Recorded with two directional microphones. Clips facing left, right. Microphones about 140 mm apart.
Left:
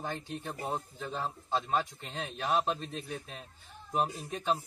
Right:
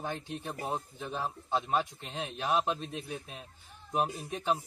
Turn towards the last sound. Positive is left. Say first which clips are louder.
# even
turn(degrees=-10)  # may be behind; listen again after turning